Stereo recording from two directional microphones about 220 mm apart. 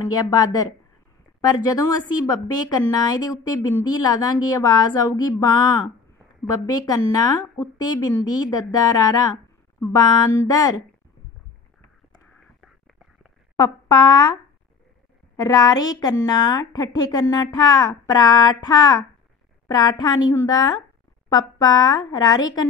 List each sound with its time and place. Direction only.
0.1 s speech: 15° left (ahead or behind)
12.5 s whispering: centre (ahead or behind)
13.6 s speech: 15° left (ahead or behind)